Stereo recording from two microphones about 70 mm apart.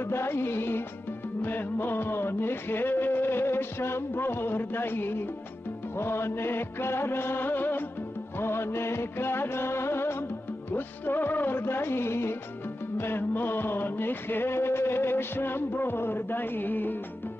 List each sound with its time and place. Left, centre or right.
0.0 s music: left